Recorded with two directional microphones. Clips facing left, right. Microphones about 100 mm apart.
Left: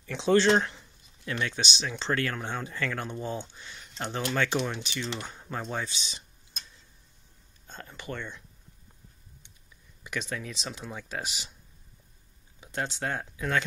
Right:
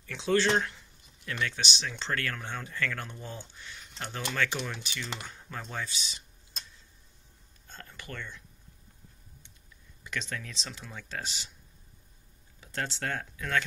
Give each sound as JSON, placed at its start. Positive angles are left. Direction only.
{"t": 0.0, "sound": "speech", "side_deg": 25}
{"t": 7.6, "sound": "speech", "side_deg": 20}
{"t": 10.0, "sound": "speech", "side_deg": 10}
{"t": 12.5, "sound": "speech", "side_deg": 20}